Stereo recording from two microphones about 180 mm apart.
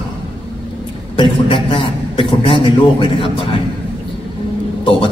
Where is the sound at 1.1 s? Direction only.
30° left (ahead or behind).